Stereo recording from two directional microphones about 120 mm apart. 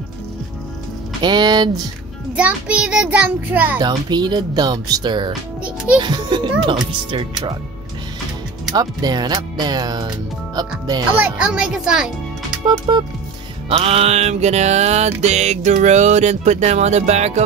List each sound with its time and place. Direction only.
1.2 s speech: 35° right (ahead or behind)
2.3 s a child's voice: 10° right (ahead or behind)
3.8 s speech: 35° right (ahead or behind)
8.7 s speech: 35° right (ahead or behind)
11.1 s a child's voice: 10° right (ahead or behind)
12.6 s speech: 40° right (ahead or behind)
13.7 s music: 55° right (ahead or behind)